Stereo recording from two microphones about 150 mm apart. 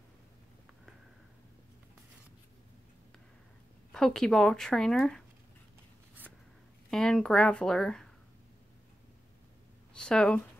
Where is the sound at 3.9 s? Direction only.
5° left (ahead or behind).